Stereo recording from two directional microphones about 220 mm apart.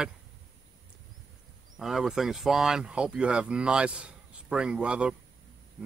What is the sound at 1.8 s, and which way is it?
Speech, centre (ahead or behind).